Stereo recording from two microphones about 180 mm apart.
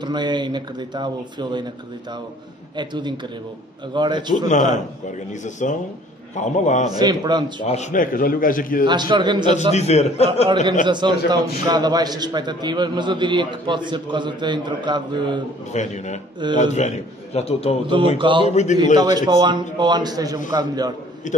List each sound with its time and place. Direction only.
0.0 s a man's voice: 25° right (ahead or behind)
2.8 s a man's voice: 25° right (ahead or behind)
4.5 s a man's voice: 45° left (ahead or behind)
6.9 s a man's voice: 25° right (ahead or behind)
7.6 s a man's voice: 40° left (ahead or behind)
8.8 s a man's voice: 25° right (ahead or behind)
9.7 s a man's voice: 35° left (ahead or behind)
10.5 s a man's voice: 25° right (ahead or behind)
15.7 s a man's voice: 40° left (ahead or behind)
18.1 s a man's voice: 30° right (ahead or behind)
18.5 s a man's voice: 40° left (ahead or behind)
19.1 s a man's voice: 25° right (ahead or behind)
21.2 s a man's voice: 45° left (ahead or behind)